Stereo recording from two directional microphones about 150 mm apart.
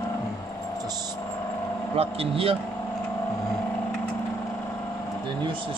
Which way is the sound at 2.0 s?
40° right (ahead or behind).